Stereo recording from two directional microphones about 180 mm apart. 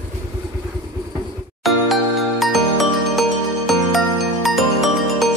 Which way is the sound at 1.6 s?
Centre (ahead or behind).